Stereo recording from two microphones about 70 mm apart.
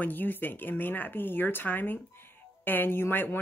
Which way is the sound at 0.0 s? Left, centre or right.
Left.